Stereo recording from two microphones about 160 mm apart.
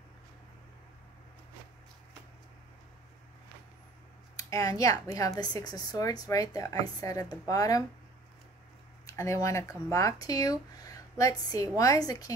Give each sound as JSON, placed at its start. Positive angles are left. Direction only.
{"t": 4.4, "sound": "speech", "side_deg": 20}
{"t": 9.0, "sound": "speech", "side_deg": 20}